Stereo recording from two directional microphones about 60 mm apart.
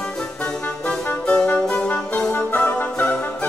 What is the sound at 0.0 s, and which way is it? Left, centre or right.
Music, centre.